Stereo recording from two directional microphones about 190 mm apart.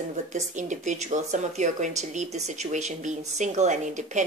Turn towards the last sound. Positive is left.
turn(degrees=-40)  # may be behind; listen again after turning